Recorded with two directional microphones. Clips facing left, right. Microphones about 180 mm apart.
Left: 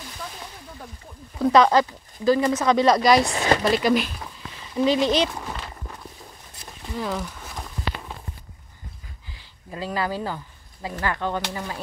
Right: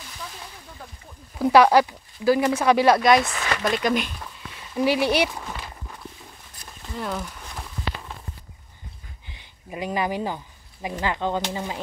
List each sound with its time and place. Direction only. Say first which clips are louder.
1.4 s speech: right 1 dB; 10° right (ahead or behind)
3.3 s speech: left 5 dB; 30° left (ahead or behind)
3.7 s speech: left 3 dB; 5° left (ahead or behind)
4.7 s speech: left 1 dB; 10° right (ahead or behind)
6.9 s speech: left 2 dB; centre (ahead or behind)
9.3 s speech: right 1 dB; 20° right (ahead or behind)